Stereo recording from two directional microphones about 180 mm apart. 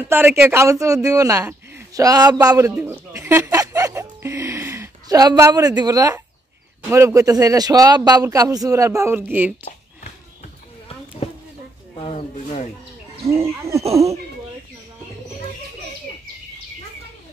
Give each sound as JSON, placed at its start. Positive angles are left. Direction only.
{"t": 0.1, "sound": "a woman's voice", "side_deg": -10}
{"t": 2.7, "sound": "a man's voice", "side_deg": -5}
{"t": 3.1, "sound": "a sound", "side_deg": -15}
{"t": 5.8, "sound": "a man's voice", "side_deg": -20}
{"t": 12.0, "sound": "speech", "side_deg": 35}
{"t": 13.3, "sound": "a woman's voice", "side_deg": -15}